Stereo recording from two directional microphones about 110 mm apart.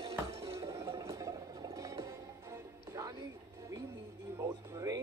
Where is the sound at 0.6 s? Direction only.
30° right (ahead or behind).